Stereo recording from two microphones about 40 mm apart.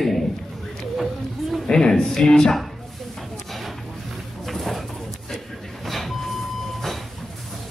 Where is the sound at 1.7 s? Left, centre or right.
Centre.